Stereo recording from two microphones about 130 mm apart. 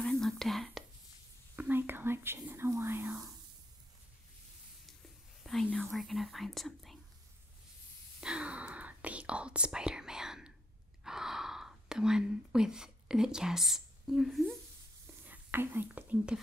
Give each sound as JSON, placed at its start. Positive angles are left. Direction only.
{"t": 0.0, "sound": "whispering", "side_deg": 5}
{"t": 1.6, "sound": "whispering", "side_deg": -15}
{"t": 5.4, "sound": "whispering", "side_deg": 0}
{"t": 8.2, "sound": "whispering", "side_deg": -5}
{"t": 15.2, "sound": "whispering", "side_deg": -15}